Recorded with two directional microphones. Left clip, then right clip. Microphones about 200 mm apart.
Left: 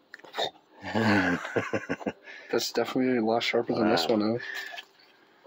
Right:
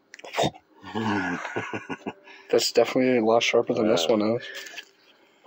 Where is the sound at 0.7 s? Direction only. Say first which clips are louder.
Left 6 dB; 55° left (ahead or behind).